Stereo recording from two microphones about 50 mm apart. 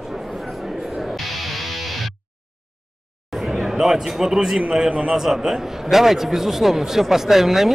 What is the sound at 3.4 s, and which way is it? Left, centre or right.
A man's voice, centre.